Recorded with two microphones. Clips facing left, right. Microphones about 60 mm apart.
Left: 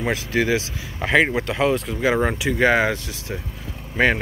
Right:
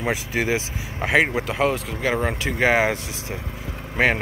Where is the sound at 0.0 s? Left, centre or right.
Centre.